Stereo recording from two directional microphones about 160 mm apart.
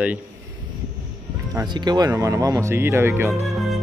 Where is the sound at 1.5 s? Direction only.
30° right (ahead or behind).